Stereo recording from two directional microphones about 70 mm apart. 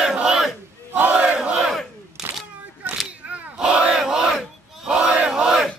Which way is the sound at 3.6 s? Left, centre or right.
Centre.